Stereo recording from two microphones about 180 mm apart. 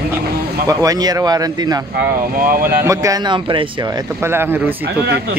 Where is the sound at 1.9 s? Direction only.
50° right (ahead or behind).